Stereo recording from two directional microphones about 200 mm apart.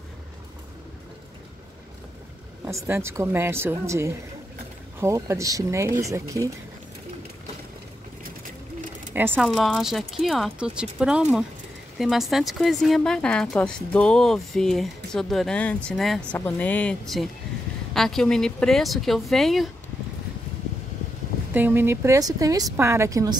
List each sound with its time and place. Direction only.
2.6 s a woman's voice: 15° right (ahead or behind)
9.1 s a woman's voice: 10° right (ahead or behind)
9.5 s speech: centre (ahead or behind)
21.5 s a woman's voice: 10° right (ahead or behind)